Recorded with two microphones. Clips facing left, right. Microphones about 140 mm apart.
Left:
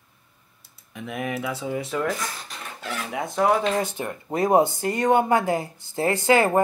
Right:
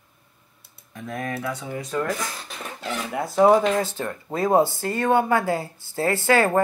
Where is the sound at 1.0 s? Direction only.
10° left (ahead or behind).